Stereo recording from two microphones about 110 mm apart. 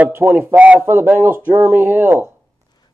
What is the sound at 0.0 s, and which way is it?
Speech, 20° right (ahead or behind).